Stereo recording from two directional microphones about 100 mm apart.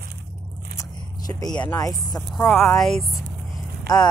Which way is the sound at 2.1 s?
15° left (ahead or behind).